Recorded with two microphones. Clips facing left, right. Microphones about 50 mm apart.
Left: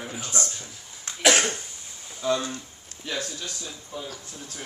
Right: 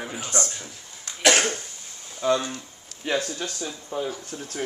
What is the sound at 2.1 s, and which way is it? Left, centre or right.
Speech, centre.